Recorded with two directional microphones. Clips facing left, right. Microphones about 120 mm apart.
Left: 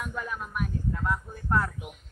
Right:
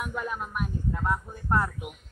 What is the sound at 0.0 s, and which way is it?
Speech, 15° right (ahead or behind).